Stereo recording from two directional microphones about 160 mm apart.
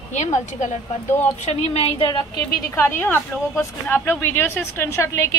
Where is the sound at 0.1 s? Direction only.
45° left (ahead or behind).